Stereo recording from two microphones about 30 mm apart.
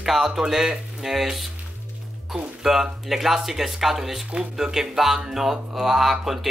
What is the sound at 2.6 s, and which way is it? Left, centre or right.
Speech, centre.